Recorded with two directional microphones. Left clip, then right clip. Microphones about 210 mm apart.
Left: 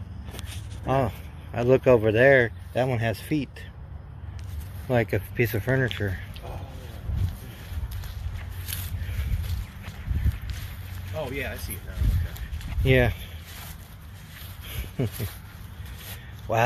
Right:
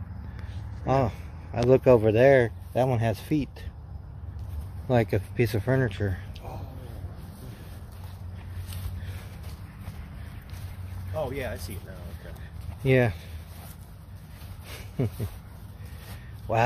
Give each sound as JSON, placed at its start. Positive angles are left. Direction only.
{"t": 0.4, "sound": "speech", "side_deg": -5}
{"t": 4.8, "sound": "speech", "side_deg": -10}
{"t": 11.1, "sound": "speech", "side_deg": -30}
{"t": 12.8, "sound": "speech", "side_deg": 0}
{"t": 15.0, "sound": "speech", "side_deg": 0}
{"t": 16.5, "sound": "speech", "side_deg": 0}